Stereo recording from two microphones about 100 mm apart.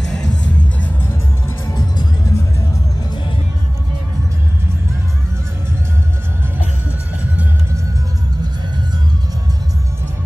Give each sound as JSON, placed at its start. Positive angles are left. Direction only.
{"t": 1.7, "sound": "music", "side_deg": 35}